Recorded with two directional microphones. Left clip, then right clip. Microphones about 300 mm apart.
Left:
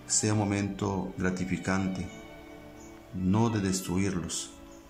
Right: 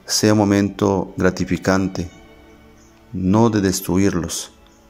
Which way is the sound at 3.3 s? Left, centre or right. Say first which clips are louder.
Right 13 dB; right.